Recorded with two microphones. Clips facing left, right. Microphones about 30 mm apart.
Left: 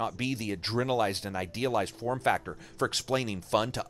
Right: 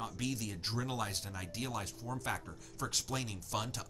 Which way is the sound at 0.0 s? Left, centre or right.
Left.